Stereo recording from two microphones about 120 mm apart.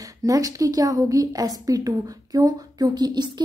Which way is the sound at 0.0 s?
30° right (ahead or behind).